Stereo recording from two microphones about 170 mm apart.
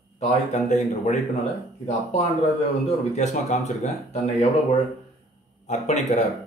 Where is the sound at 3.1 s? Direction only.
45° left (ahead or behind).